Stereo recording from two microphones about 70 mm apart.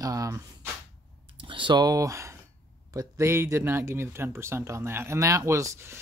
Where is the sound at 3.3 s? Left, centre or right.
Right.